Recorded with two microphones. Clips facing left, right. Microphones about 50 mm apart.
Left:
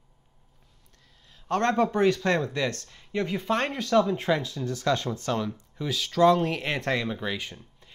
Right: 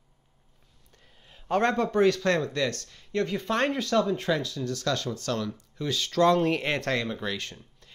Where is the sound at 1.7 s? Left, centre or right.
Centre.